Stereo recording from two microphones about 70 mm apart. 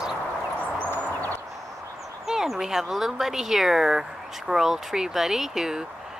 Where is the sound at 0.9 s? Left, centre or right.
Left.